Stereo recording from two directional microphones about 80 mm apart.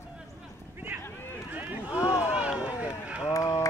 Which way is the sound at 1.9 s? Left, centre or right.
Left.